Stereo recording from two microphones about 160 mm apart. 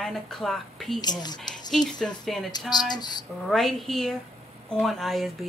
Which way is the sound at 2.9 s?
25° left (ahead or behind).